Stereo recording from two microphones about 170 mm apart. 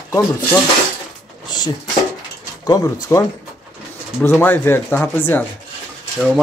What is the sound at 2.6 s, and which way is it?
Speech, 20° left (ahead or behind).